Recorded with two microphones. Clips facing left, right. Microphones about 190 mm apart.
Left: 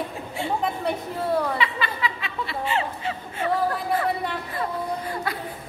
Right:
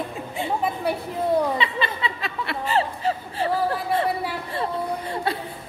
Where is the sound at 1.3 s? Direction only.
25° right (ahead or behind).